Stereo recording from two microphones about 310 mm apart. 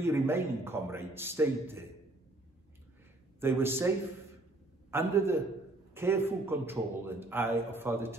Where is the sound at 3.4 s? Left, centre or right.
Centre.